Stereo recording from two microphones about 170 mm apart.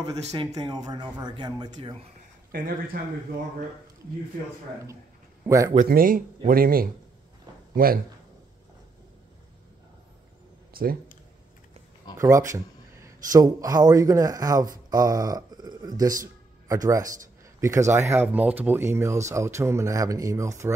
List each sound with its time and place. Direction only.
0.0 s speech: 20° right (ahead or behind)
2.5 s speech: 55° right (ahead or behind)
5.9 s a man's voice: 55° right (ahead or behind)
10.7 s a sound: 60° right (ahead or behind)
12.2 s speech: 20° right (ahead or behind)